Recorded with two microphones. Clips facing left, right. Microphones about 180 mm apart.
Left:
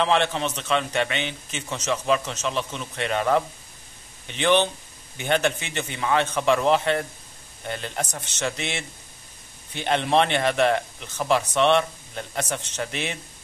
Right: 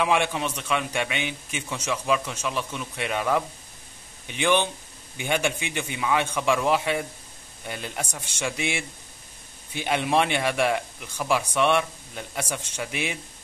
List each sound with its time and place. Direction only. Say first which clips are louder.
0.0 s a man's voice: left 2 dB; 10° right (ahead or behind)